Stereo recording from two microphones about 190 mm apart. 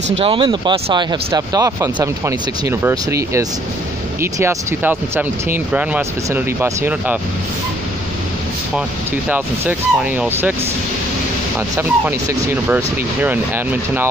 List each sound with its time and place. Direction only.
0.2 s speech: 25° right (ahead or behind); by 7.2 s 10° right (ahead or behind)
9.3 s speech: 10° right (ahead or behind)
11.7 s speech: 10° right (ahead or behind)